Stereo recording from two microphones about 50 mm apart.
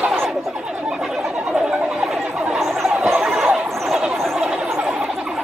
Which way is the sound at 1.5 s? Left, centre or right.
Centre.